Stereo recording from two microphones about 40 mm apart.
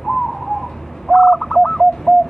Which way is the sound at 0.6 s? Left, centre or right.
Centre.